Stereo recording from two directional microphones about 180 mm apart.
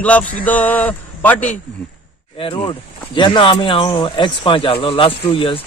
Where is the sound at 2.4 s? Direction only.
25° left (ahead or behind).